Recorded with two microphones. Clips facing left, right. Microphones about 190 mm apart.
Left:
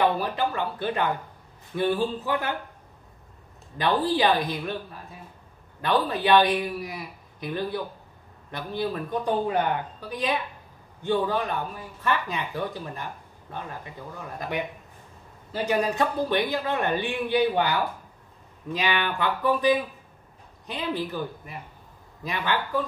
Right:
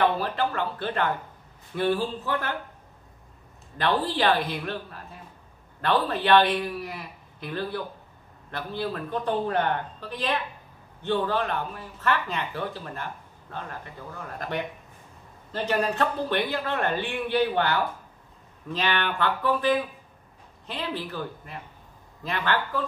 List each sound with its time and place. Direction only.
0.0 s speech: 15° left (ahead or behind)
3.7 s speech: 15° left (ahead or behind)
5.8 s speech: 15° left (ahead or behind)